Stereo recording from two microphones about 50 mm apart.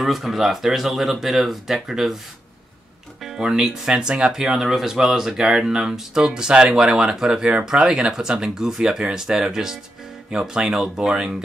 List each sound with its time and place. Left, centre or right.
0.0 s speech: centre
3.3 s speech: centre